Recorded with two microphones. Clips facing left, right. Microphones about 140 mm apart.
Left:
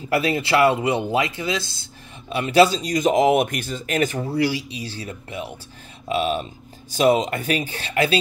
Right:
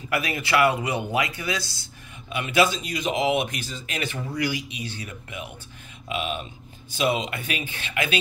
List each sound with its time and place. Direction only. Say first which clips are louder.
0.1 s speech: left 5 dB; 30° left (ahead or behind)
2.2 s speech: left 6 dB; 35° left (ahead or behind)